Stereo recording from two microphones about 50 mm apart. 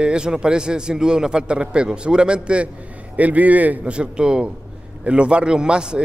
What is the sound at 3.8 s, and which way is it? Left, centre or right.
A man's voice, right.